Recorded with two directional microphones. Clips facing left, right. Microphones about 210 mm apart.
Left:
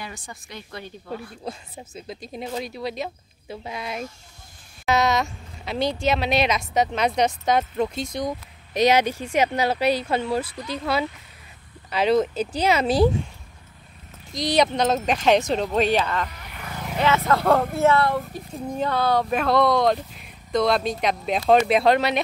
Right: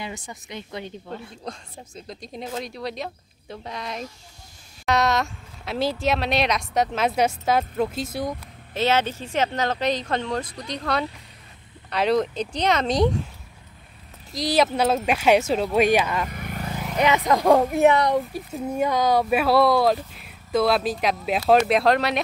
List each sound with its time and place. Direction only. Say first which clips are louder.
0.0 s speech: right 3 dB; 20° right (ahead or behind)
1.4 s speech: left 2 dB; 5° left (ahead or behind)
8.7 s speech: left 3 dB; 15° left (ahead or behind)
14.3 s speech: even; centre (ahead or behind)
16.3 s vehicle: right 8 dB; 50° right (ahead or behind)
16.9 s speech: right 1 dB; 15° right (ahead or behind); by 22.2 s centre (ahead or behind)